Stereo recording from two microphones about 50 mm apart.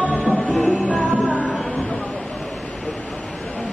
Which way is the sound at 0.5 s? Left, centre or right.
Centre.